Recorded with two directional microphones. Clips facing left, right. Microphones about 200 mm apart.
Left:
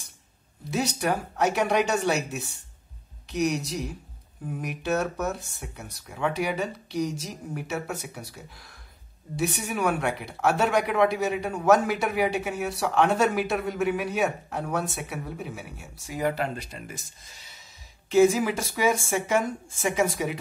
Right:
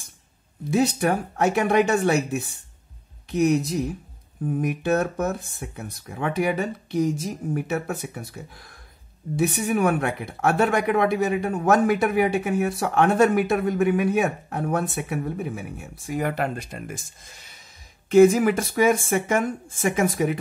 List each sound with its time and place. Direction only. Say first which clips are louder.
0.7 s speech: right 5 dB; 55° right (ahead or behind)
18.1 s speech: right 5 dB; 55° right (ahead or behind)